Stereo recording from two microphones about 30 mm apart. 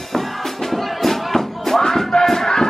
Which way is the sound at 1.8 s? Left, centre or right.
Centre.